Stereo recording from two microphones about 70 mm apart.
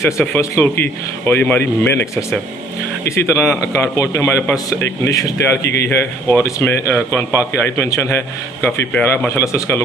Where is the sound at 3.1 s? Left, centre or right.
Left.